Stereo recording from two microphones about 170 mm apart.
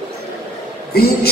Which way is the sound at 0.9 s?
65° left (ahead or behind).